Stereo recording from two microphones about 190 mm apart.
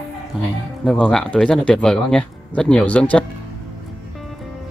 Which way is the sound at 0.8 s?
5° left (ahead or behind).